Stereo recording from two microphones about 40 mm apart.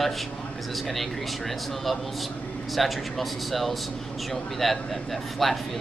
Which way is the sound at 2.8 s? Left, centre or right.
Centre.